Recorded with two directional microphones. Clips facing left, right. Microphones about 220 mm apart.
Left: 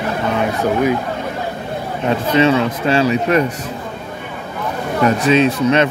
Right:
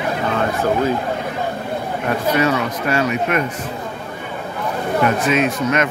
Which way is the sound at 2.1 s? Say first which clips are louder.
Left 4 dB; 25° left (ahead or behind).